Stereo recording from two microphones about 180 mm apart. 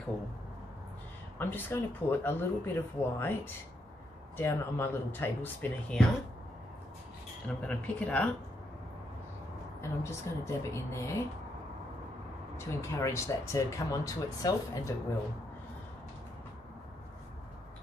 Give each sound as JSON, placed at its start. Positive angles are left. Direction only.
{"t": 1.4, "sound": "speech", "side_deg": 10}
{"t": 7.4, "sound": "speech", "side_deg": 5}
{"t": 9.8, "sound": "speech", "side_deg": 15}
{"t": 12.5, "sound": "speech", "side_deg": 15}